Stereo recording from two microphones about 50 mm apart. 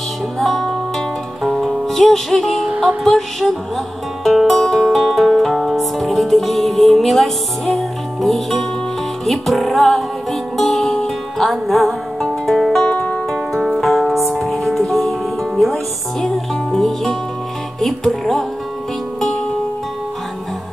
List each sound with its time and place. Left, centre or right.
0.4 s music: centre
12.8 s music: left
13.3 s music: centre
17.7 s speech: centre